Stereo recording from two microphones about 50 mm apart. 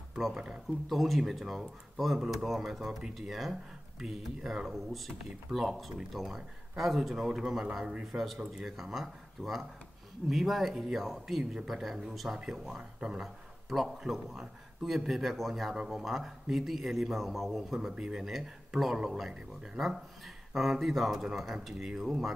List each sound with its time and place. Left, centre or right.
0.3 s speech: centre
0.8 s a man's voice: centre
13.7 s a man's voice: centre